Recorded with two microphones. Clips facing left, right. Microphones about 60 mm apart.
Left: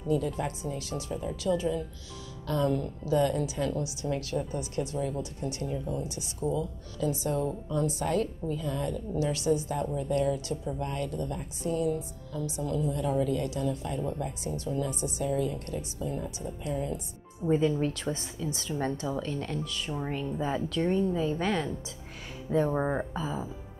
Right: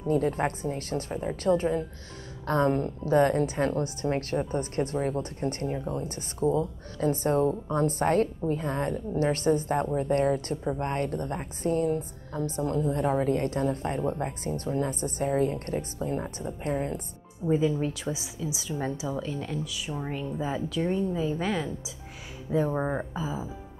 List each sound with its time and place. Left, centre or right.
0.0 s a woman's voice: right
17.5 s a woman's voice: centre